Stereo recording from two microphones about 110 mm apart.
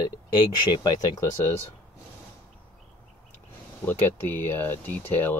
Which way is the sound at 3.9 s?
20° left (ahead or behind).